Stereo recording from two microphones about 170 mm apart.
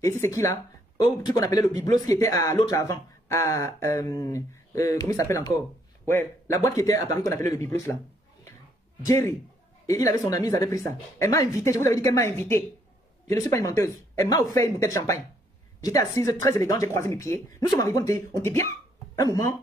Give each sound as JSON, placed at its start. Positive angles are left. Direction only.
{"t": 0.0, "sound": "speech", "side_deg": 15}
{"t": 9.0, "sound": "speech", "side_deg": 20}